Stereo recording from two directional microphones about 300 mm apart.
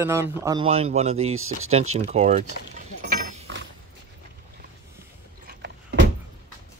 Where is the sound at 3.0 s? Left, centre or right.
Right.